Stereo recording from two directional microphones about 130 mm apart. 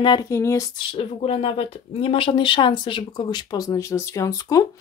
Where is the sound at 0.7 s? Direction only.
45° left (ahead or behind).